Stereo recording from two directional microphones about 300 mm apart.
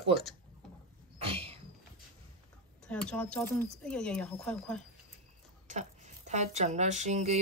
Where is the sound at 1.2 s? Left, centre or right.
Centre.